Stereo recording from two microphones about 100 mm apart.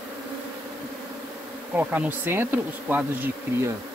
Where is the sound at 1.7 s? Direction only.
15° right (ahead or behind).